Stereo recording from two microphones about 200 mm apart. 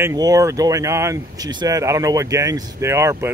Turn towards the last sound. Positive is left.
turn(degrees=-15)  # may be behind; listen again after turning